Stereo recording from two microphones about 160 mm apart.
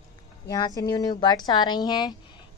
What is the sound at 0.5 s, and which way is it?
A woman's voice, 25° left (ahead or behind).